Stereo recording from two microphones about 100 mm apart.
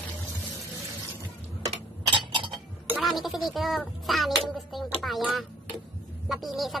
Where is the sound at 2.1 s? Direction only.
55° right (ahead or behind).